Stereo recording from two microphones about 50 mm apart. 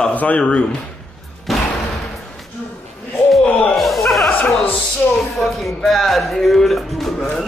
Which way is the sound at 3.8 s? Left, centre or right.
Centre.